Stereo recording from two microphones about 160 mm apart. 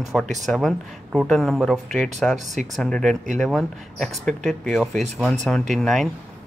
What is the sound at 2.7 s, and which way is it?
Speech, 5° left (ahead or behind).